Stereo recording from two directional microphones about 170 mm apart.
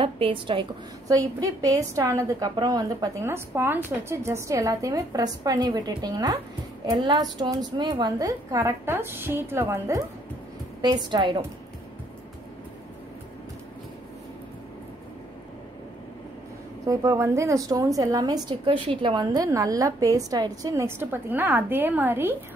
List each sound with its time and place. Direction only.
0.0 s a woman's voice: 30° right (ahead or behind)
1.1 s a woman's voice: 20° right (ahead or behind)
16.8 s a woman's voice: 20° right (ahead or behind)